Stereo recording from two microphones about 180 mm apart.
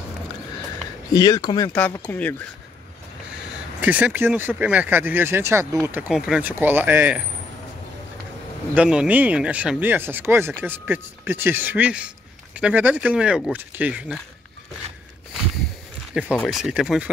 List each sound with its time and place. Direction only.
1.1 s speech: 20° left (ahead or behind)
1.7 s speech: 10° left (ahead or behind)
3.8 s speech: 10° right (ahead or behind)
8.7 s speech: 5° right (ahead or behind)
16.2 s speech: centre (ahead or behind)